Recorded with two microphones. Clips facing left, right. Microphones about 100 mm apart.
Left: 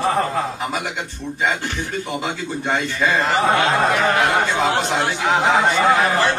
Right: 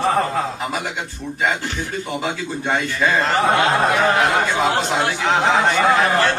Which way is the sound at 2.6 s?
5° right (ahead or behind).